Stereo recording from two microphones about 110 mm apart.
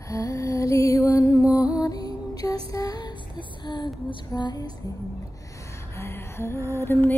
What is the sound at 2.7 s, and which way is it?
Child singing, 35° left (ahead or behind).